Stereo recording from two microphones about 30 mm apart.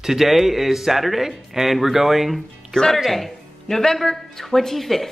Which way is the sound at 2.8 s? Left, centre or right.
Left.